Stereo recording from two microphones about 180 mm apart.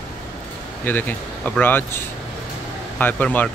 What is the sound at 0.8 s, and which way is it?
Speech, 10° left (ahead or behind).